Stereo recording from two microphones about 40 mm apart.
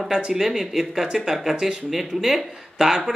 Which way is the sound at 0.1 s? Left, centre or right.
Centre.